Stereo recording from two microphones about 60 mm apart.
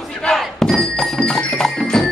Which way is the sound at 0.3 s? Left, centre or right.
Centre.